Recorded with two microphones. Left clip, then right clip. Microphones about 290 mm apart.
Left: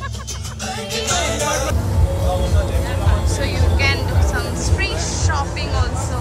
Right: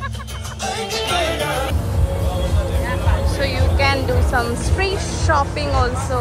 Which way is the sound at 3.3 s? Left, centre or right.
Centre.